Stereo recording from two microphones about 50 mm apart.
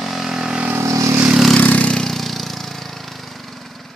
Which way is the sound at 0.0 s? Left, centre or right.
Centre.